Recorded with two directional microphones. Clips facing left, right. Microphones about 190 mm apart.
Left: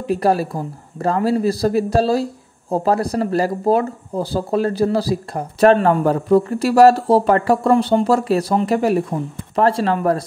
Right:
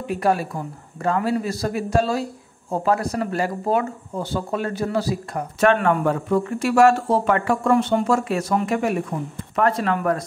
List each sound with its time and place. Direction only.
0.0 s speech: 35° left (ahead or behind)